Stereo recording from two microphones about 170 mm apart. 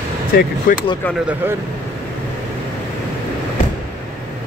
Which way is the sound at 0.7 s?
50° left (ahead or behind).